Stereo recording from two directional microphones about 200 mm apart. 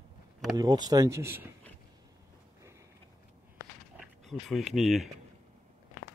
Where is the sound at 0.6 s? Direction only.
20° right (ahead or behind).